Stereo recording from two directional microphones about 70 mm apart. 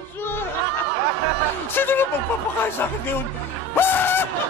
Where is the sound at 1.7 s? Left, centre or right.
Left.